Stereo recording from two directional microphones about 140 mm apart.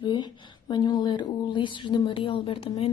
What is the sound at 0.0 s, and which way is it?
Speech, 30° left (ahead or behind).